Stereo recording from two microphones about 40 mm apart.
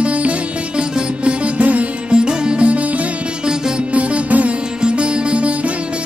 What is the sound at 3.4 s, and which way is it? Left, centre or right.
Music, centre.